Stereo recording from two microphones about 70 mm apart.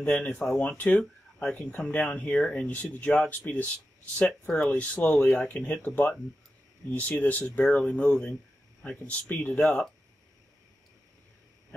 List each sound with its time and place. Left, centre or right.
0.0 s speech: left
6.9 s speech: left